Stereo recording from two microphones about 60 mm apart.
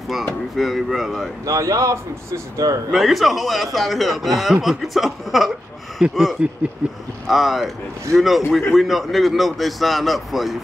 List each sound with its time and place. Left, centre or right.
0.6 s a man's voice: centre
1.4 s speech: right
2.9 s a man's voice: centre
7.2 s a man's voice: centre